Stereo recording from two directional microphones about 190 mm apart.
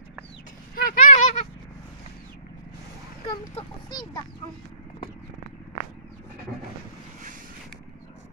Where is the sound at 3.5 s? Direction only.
20° left (ahead or behind).